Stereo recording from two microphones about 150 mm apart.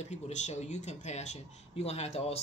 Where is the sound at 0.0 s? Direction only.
50° left (ahead or behind).